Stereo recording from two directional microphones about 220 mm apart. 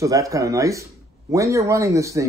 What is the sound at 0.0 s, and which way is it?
Speech, 15° right (ahead or behind).